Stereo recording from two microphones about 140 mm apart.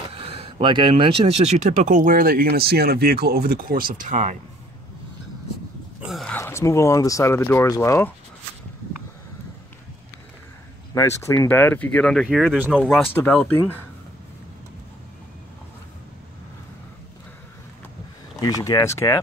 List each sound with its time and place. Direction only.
0.1 s speech: 45° right (ahead or behind); by 4.4 s 60° right (ahead or behind)
6.0 s a sound: centre (ahead or behind)
6.3 s speech: 20° left (ahead or behind)
11.0 s speech: 20° left (ahead or behind); by 12.5 s centre (ahead or behind)
12.5 s speech: 10° right (ahead or behind)
12.9 s speech: 10° left (ahead or behind)
18.4 s speech: 25° left (ahead or behind)